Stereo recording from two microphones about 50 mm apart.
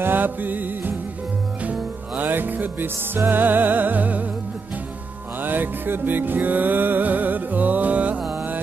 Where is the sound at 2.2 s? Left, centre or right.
Right.